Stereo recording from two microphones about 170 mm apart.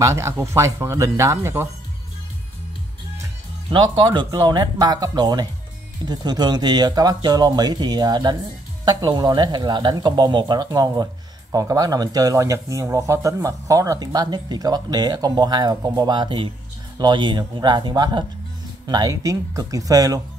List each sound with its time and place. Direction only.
0.0 s speech: 15° right (ahead or behind)
3.7 s speech: 25° right (ahead or behind)